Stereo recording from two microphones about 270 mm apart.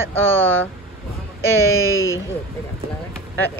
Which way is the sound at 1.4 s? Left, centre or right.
Left.